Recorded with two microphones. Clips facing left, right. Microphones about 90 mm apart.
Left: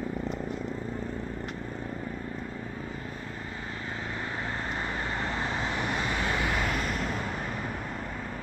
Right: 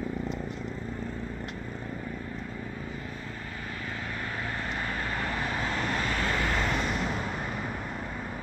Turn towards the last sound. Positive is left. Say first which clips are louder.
# right 1 dB
turn(degrees=0)  # may be behind; listen again after turning